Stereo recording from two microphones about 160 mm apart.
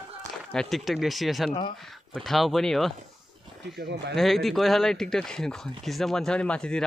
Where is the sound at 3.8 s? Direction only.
90° right.